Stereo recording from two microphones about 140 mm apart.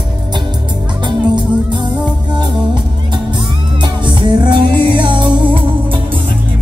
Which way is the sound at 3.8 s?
35° right (ahead or behind).